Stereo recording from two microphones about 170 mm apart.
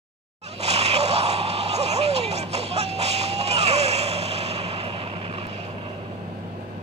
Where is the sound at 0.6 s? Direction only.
40° right (ahead or behind).